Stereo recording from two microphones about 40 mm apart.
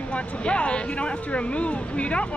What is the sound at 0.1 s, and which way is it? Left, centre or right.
Speech, left.